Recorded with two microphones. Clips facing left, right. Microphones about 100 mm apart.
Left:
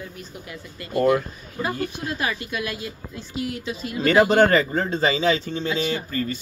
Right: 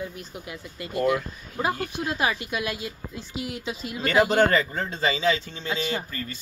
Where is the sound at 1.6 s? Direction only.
20° right (ahead or behind).